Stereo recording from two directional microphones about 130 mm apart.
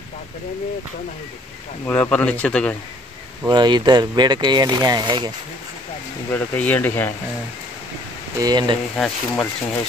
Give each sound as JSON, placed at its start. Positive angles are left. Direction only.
{"t": 1.9, "sound": "speech", "side_deg": 10}
{"t": 3.4, "sound": "speech", "side_deg": -35}
{"t": 6.3, "sound": "speech", "side_deg": 15}
{"t": 8.4, "sound": "speech", "side_deg": -30}
{"t": 8.9, "sound": "speech", "side_deg": 5}